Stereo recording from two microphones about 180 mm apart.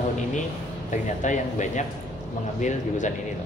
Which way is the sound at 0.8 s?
40° left (ahead or behind).